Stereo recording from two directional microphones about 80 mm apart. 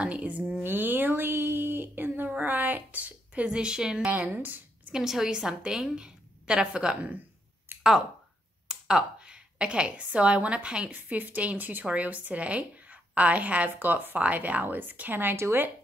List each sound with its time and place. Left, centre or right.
0.0 s a woman's voice: centre
0.6 s a sound: right
4.1 s speech: right
4.9 s a woman's voice: centre
7.7 s a sound: right
8.6 s a woman's voice: centre; by 15.7 s right